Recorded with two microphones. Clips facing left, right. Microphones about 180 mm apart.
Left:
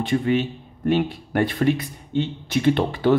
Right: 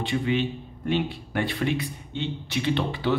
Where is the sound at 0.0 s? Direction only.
45° left (ahead or behind).